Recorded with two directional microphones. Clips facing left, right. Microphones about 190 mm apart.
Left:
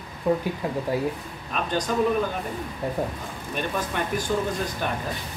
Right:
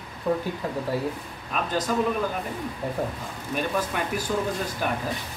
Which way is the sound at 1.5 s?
5° right (ahead or behind).